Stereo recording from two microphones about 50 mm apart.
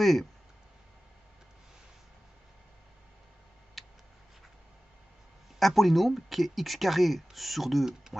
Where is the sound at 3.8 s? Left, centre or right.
Centre.